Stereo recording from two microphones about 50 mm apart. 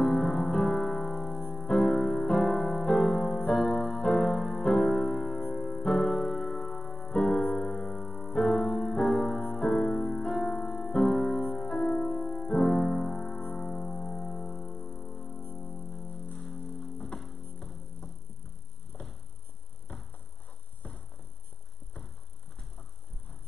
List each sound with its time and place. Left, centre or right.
0.0 s music: centre
3.5 s keyboard: centre
5.4 s music: centre
8.4 s piano: centre
9.5 s music: centre
18.9 s vehicle: left
20.8 s a sound: left